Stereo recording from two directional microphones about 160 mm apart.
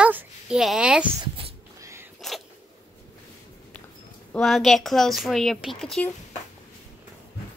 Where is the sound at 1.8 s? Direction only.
15° right (ahead or behind).